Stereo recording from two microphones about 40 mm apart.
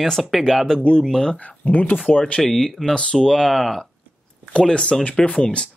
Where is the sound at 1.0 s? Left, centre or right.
Centre.